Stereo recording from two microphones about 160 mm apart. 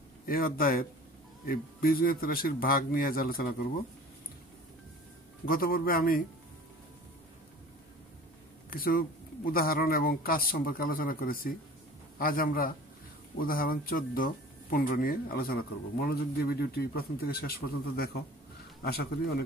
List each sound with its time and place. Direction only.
0.3 s speech: 65° left (ahead or behind)
5.5 s speech: 65° left (ahead or behind)
8.6 s speech: 65° left (ahead or behind)